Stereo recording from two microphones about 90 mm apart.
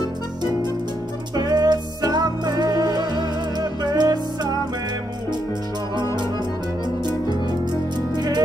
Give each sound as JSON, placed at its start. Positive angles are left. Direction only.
{"t": 1.3, "sound": "music", "side_deg": -45}